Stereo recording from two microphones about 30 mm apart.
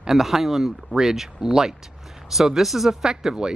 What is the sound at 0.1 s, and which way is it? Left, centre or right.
Speech, centre.